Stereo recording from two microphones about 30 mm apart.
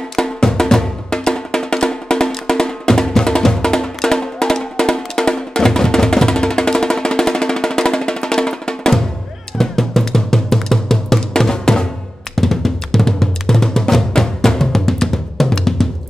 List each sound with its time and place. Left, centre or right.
0.1 s music: centre
9.6 s drum: centre
12.4 s drum: centre